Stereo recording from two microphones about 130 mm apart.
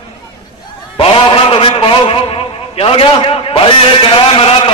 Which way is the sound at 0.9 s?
45° left (ahead or behind).